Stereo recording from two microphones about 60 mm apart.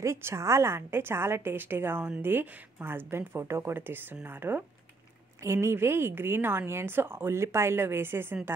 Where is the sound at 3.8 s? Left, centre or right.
Right.